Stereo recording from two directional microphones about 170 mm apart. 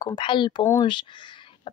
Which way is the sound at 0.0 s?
25° left (ahead or behind).